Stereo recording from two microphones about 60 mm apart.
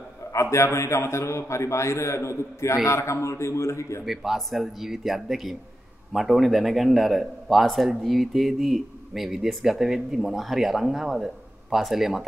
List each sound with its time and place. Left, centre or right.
0.3 s a man's voice: left
4.0 s a man's voice: centre